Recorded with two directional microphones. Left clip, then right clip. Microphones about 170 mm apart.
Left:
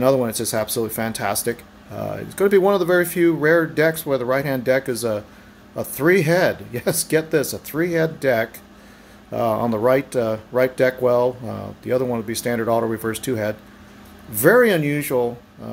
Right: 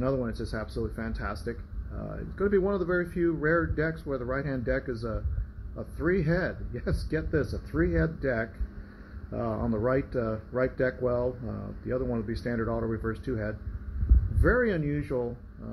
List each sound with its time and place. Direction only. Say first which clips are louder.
0.0 s speech: left 12 dB; 25° left (ahead or behind)